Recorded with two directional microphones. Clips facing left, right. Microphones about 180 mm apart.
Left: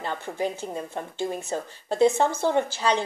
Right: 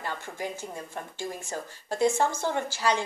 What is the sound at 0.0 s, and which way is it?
Speech, 20° left (ahead or behind).